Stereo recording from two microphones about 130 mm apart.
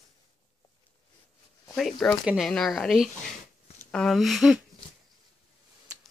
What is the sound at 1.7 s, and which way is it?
Speech, centre (ahead or behind).